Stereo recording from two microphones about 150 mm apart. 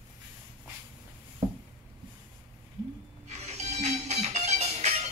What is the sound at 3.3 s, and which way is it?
Music, 50° right (ahead or behind).